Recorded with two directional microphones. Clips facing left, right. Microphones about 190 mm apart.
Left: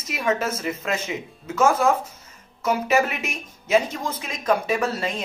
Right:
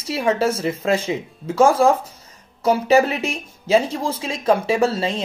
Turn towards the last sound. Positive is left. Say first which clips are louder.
# right 5 dB
turn(degrees=-30)  # may be behind; listen again after turning